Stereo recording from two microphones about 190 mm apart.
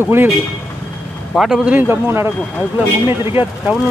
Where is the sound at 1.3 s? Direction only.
Centre (ahead or behind).